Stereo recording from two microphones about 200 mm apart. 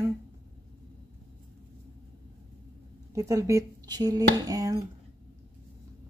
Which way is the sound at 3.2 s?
15° right (ahead or behind).